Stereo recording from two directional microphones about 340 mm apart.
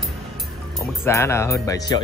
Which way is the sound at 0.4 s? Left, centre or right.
Centre.